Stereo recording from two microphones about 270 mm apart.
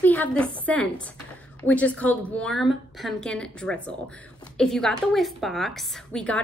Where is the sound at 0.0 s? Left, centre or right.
Centre.